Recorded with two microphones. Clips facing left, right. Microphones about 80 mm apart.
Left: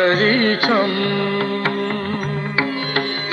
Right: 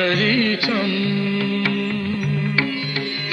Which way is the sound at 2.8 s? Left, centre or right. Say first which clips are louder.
Left 5 dB; left.